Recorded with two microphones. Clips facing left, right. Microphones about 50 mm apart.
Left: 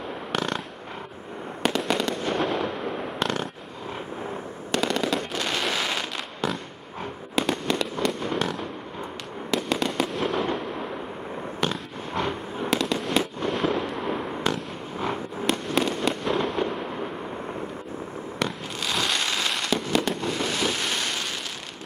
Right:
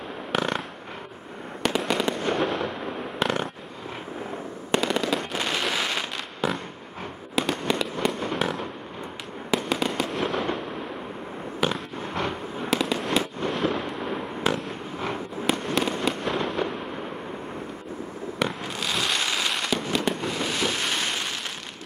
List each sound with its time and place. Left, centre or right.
0.3 s a sound: centre
1.7 s fireworks: centre
4.7 s machine gun: right
5.1 s fireworks: centre
11.6 s fireworks: centre
18.4 s fireworks: centre